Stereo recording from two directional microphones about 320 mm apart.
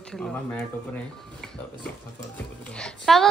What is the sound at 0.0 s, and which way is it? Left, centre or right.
Speech, centre.